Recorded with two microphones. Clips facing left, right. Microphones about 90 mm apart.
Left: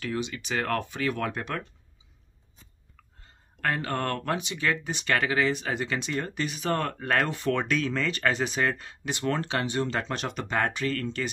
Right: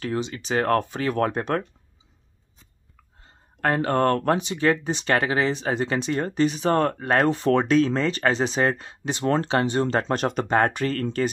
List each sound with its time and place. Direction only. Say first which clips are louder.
0.0 s speech: right 4 dB; 35° right (ahead or behind)
3.6 s speech: right 8 dB; 35° right (ahead or behind)